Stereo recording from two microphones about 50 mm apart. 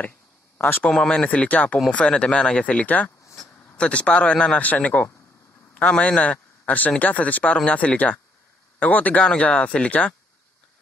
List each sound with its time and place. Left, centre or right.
0.6 s a man's voice: left
0.8 s a man's voice: centre